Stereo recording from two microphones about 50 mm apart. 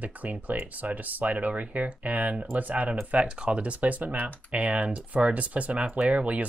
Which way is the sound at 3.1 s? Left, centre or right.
Right.